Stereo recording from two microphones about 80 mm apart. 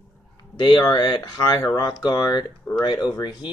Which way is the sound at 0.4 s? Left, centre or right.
Left.